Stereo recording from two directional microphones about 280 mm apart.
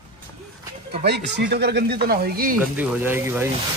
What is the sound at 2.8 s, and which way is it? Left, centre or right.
Speech, centre.